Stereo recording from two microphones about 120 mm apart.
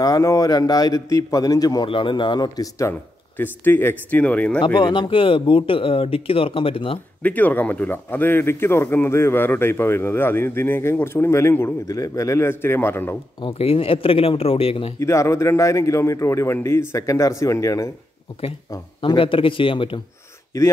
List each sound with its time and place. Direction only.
0.0 s a man's voice: 30° left (ahead or behind)
1.9 s a man's voice: 45° left (ahead or behind)
2.9 s speech: 15° left (ahead or behind)
4.6 s a man's voice: 40° left (ahead or behind)
7.2 s speech: 15° left (ahead or behind)
13.4 s a man's voice: 50° left (ahead or behind)
15.0 s speech: 25° left (ahead or behind)
18.9 s a man's voice: 45° left (ahead or behind)